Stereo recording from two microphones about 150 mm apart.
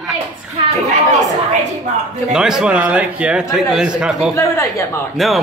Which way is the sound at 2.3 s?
5° right (ahead or behind).